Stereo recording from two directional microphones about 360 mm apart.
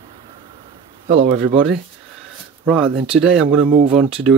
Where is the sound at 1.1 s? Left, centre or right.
Right.